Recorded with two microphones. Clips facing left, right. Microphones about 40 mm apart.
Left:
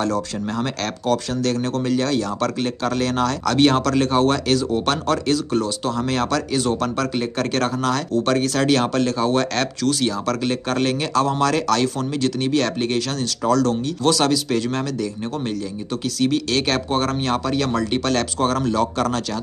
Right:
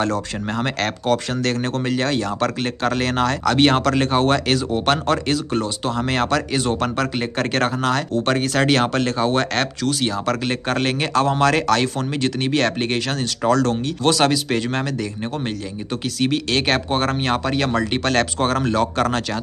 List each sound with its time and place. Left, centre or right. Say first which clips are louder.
0.0 s speech: even; right
16.2 s speech: even; right